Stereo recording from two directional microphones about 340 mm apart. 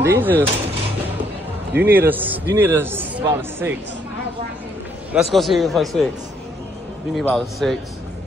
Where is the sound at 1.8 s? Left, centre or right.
Centre.